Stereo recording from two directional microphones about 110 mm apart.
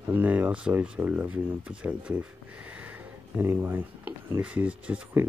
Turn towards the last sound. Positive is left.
turn(degrees=-15)  # may be behind; listen again after turning